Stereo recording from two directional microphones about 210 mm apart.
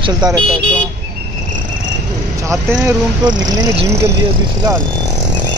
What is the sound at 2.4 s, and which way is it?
Speech, 15° right (ahead or behind).